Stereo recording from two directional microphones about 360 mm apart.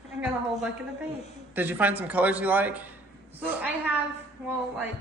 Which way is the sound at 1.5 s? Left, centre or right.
Centre.